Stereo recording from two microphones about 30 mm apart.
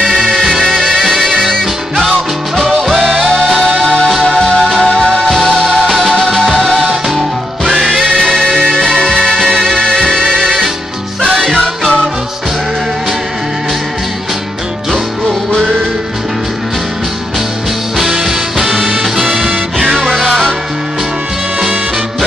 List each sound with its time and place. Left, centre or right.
0.6 s music: centre
3.1 s music: centre
5.3 s music: centre
8.4 s music: centre
8.8 s music: left
9.5 s music: centre
18.2 s music: centre
20.1 s music: centre